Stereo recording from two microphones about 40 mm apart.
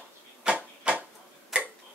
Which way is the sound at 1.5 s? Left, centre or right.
Right.